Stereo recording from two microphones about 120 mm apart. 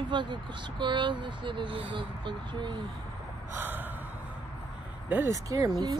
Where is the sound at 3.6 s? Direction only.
15° right (ahead or behind).